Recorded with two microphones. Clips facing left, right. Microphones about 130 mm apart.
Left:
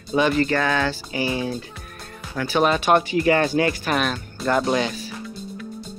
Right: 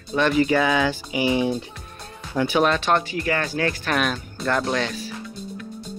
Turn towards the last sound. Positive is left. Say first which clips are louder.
# left 3 dB
turn(degrees=5)  # may be behind; listen again after turning